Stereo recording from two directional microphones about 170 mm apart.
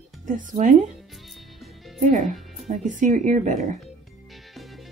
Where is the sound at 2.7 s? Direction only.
50° right (ahead or behind).